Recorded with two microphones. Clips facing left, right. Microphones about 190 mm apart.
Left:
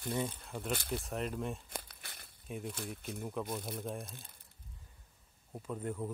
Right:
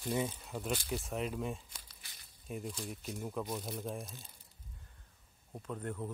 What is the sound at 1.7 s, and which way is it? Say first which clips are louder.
Crumpling: left 11 dB; 55° left (ahead or behind).